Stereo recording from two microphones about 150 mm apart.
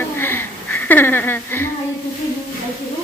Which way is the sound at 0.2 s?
15° left (ahead or behind).